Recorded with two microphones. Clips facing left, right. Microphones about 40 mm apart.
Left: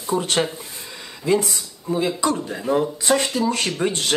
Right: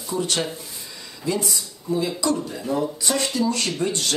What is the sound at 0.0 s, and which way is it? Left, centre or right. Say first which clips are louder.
Speech: left 4 dB; left.